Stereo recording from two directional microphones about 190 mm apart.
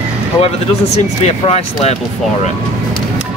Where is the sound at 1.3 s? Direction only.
35° left (ahead or behind).